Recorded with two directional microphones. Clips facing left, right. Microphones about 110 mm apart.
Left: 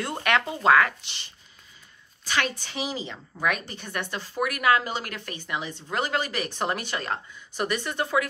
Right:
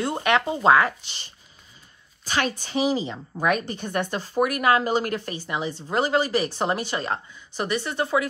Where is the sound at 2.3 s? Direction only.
40° right (ahead or behind).